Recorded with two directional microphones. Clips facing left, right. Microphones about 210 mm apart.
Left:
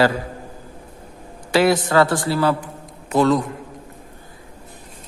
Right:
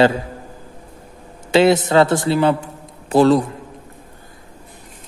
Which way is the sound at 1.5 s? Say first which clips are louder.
Right 3 dB; 25° right (ahead or behind).